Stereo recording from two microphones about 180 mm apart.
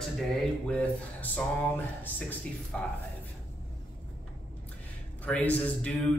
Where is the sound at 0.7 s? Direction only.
5° left (ahead or behind).